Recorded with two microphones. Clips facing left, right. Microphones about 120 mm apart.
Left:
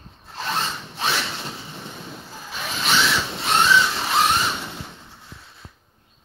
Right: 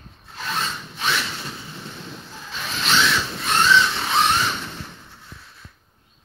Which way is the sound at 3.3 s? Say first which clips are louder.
Left 3 dB; 25° left (ahead or behind).